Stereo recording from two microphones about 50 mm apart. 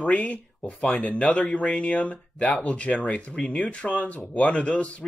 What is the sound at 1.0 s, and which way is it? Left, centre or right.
Speech, left.